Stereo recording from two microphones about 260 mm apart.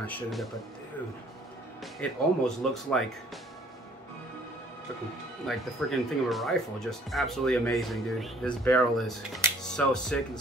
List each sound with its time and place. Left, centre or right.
0.0 s speech: centre
2.0 s speech: centre
5.9 s speech: centre